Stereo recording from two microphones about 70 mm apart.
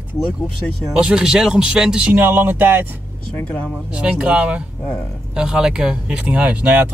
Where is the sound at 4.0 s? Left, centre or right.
Centre.